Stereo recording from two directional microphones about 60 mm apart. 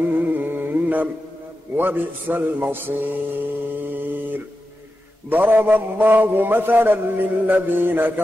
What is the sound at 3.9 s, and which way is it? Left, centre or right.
Mantra, right.